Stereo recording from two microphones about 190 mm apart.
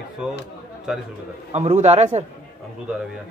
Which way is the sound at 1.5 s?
35° right (ahead or behind).